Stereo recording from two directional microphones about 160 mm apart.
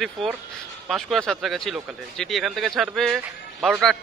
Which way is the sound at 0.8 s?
Centre (ahead or behind).